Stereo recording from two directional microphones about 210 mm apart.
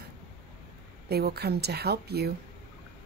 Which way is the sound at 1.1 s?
50° right (ahead or behind).